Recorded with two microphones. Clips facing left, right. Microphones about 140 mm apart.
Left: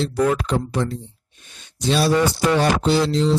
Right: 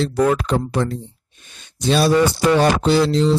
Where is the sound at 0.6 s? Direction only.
55° right (ahead or behind).